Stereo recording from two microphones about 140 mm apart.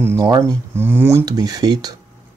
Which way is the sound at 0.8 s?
15° right (ahead or behind).